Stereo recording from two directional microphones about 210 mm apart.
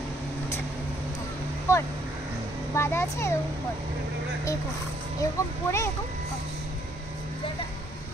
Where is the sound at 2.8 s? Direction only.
10° left (ahead or behind).